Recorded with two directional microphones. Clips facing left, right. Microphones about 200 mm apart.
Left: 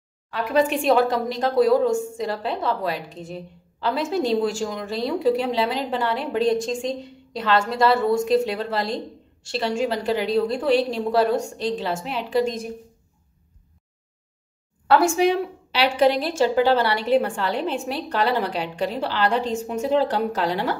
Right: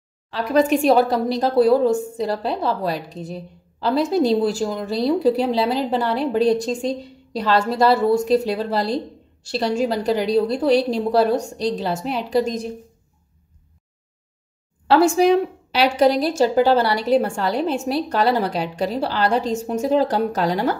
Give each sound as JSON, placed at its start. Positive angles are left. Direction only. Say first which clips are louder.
{"t": 0.3, "sound": "a woman's voice", "louder": "right 3 dB", "side_deg": -35}
{"t": 15.1, "sound": "a woman's voice", "louder": "right 4 dB", "side_deg": -40}